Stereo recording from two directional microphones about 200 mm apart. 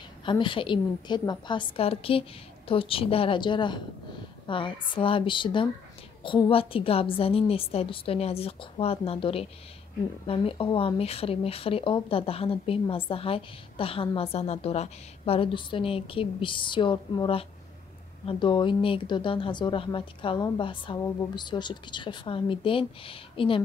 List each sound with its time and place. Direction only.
0.2 s speech: 25° left (ahead or behind)